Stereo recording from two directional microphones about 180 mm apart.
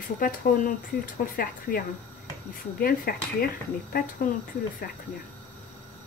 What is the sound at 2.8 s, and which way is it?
Speech, 55° left (ahead or behind).